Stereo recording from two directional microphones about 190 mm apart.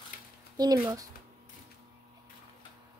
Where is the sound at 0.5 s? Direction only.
20° right (ahead or behind).